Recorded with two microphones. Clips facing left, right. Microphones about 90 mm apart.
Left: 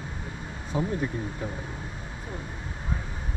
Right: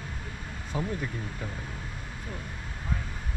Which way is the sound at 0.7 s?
25° left (ahead or behind).